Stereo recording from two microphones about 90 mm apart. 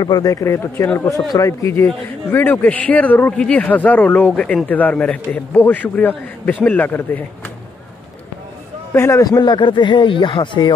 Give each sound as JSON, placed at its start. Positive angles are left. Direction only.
{"t": 0.0, "sound": "speech", "side_deg": 45}
{"t": 2.3, "sound": "a man's voice", "side_deg": 20}
{"t": 8.9, "sound": "a man's voice", "side_deg": 30}
{"t": 9.2, "sound": "speech", "side_deg": 50}